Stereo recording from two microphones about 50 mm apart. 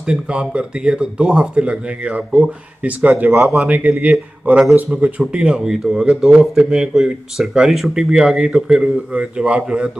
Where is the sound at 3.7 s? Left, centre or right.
Right; by 9.0 s centre.